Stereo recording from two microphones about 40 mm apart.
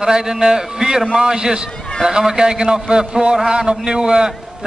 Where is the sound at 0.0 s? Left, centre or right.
Centre.